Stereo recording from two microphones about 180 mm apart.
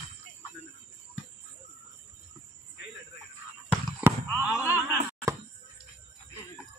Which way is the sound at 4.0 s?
10° right (ahead or behind).